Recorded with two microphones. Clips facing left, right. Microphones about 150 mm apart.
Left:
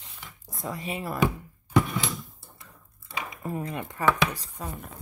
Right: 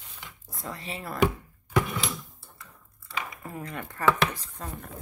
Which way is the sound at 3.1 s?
25° left (ahead or behind).